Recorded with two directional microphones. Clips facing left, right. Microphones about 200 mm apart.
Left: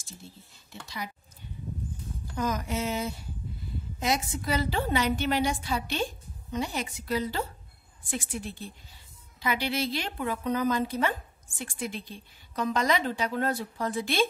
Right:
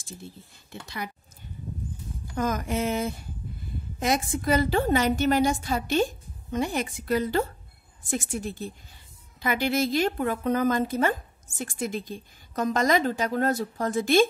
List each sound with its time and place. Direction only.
0.8 s speech: 55° right (ahead or behind)
2.3 s a woman's voice: 50° right (ahead or behind)